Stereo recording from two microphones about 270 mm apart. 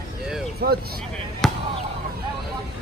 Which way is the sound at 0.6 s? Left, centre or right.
Right.